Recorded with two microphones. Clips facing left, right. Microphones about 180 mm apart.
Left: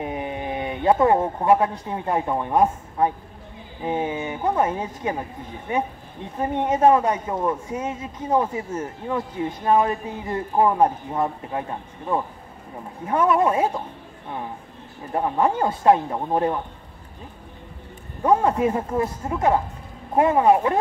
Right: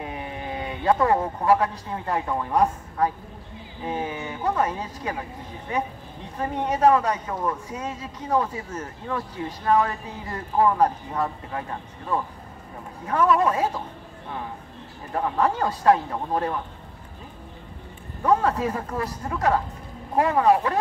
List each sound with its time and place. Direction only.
0.0 s speech: 20° left (ahead or behind)
13.0 s speech: 20° left (ahead or behind)
15.1 s speech: 20° left (ahead or behind)
18.2 s speech: 20° left (ahead or behind)